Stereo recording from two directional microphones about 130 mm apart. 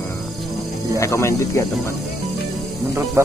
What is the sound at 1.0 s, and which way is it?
Speech, 25° left (ahead or behind).